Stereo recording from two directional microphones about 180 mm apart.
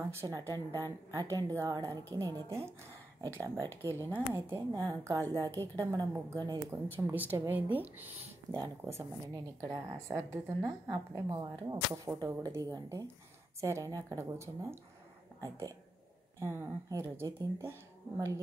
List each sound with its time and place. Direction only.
0.2 s a woman's voice: 25° right (ahead or behind)
6.7 s a woman's voice: 10° right (ahead or behind)
16.3 s a woman's voice: 15° right (ahead or behind)